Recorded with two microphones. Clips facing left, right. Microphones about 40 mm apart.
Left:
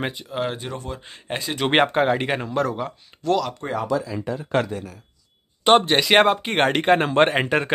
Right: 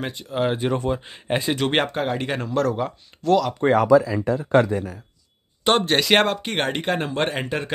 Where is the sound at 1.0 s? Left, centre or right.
Centre.